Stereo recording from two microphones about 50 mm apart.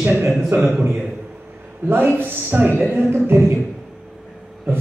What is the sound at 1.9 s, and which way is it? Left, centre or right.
Speech, right.